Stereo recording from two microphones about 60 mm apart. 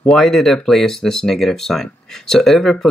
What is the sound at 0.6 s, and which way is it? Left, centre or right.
Speech, centre.